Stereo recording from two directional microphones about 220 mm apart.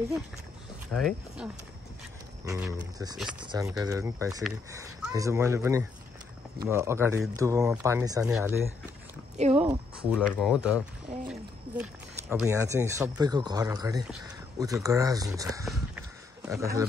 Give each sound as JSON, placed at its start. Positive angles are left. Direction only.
{"t": 0.9, "sound": "speech", "side_deg": 0}
{"t": 2.6, "sound": "speech", "side_deg": -15}
{"t": 4.3, "sound": "speech", "side_deg": 0}
{"t": 5.1, "sound": "speech", "side_deg": -15}
{"t": 8.3, "sound": "speech", "side_deg": 0}
{"t": 9.4, "sound": "speech", "side_deg": -30}
{"t": 9.7, "sound": "speech", "side_deg": -5}